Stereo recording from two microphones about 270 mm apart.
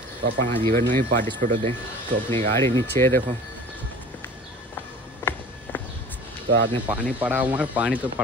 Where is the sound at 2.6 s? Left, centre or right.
Centre.